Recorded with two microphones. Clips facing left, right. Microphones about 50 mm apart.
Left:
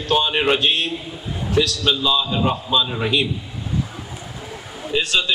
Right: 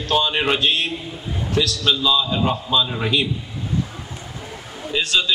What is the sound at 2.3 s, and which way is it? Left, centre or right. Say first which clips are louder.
A man's voice: even; centre.